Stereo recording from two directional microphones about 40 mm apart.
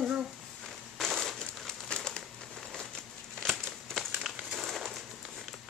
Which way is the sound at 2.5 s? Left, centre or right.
Centre.